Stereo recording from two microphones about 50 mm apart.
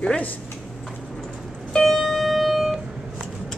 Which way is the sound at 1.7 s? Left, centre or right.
Centre.